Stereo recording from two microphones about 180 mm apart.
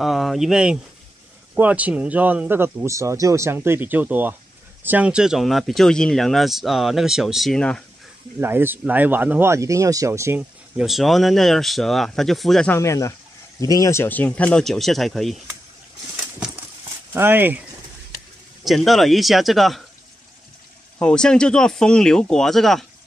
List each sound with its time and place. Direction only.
0.0 s speech: centre (ahead or behind)
8.4 s speech: 10° right (ahead or behind)
10.8 s speech: centre (ahead or behind)
12.7 s speech: 15° left (ahead or behind); by 15.5 s centre (ahead or behind)
17.1 s speech: 10° right (ahead or behind)
18.6 s speech: centre (ahead or behind)
21.0 s speech: 5° left (ahead or behind)